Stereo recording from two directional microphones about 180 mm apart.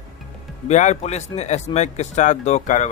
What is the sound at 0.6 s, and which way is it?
Speech, 40° left (ahead or behind).